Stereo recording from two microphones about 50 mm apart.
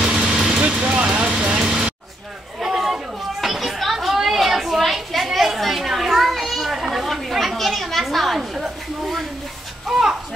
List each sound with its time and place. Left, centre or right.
0.0 s vehicle: centre
1.6 s music: centre
2.6 s children playing: centre
8.4 s a sound: centre